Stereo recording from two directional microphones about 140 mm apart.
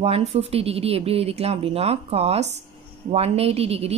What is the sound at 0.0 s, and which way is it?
A woman's voice, 45° right (ahead or behind).